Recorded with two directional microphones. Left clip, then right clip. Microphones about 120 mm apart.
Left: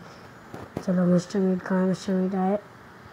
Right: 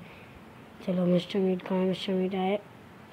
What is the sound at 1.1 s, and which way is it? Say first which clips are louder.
Speech: even; 30° right (ahead or behind).